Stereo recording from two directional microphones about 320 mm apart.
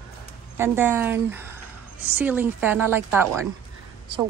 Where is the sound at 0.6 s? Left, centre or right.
Centre.